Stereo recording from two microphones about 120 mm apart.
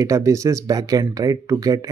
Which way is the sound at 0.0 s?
30° right (ahead or behind).